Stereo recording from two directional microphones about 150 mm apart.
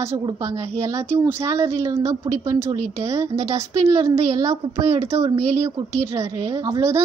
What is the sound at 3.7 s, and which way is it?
A woman's voice, 20° right (ahead or behind).